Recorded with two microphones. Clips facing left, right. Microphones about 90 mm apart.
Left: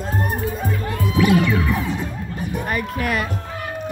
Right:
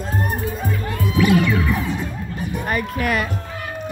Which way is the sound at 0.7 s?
25° left (ahead or behind).